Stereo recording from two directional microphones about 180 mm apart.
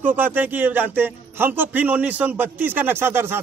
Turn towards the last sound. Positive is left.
turn(degrees=-10)  # may be behind; listen again after turning